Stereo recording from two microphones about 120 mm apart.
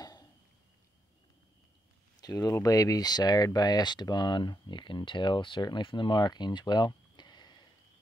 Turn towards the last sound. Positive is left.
turn(degrees=40)  # may be behind; listen again after turning